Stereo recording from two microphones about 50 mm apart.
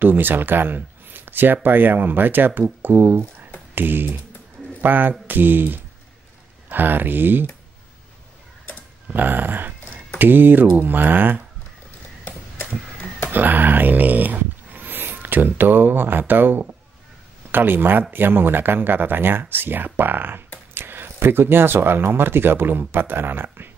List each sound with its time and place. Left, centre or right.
0.0 s speech: right
9.1 s speech: right
13.3 s speech: right